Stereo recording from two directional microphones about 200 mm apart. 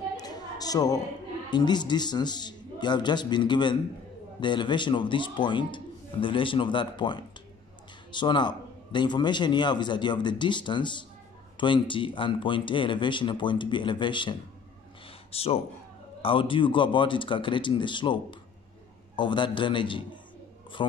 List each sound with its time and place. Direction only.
0.2 s a sound: 20° left (ahead or behind)
1.5 s a man's voice: 20° left (ahead or behind)
15.3 s a man's voice: 30° left (ahead or behind)